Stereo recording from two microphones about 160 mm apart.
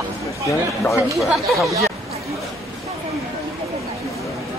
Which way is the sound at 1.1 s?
Centre (ahead or behind).